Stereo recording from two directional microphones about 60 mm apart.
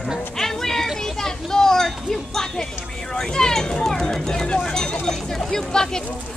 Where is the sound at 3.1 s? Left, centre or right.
Centre.